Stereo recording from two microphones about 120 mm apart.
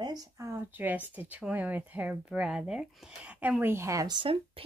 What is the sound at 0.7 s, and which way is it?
Speech, 15° right (ahead or behind).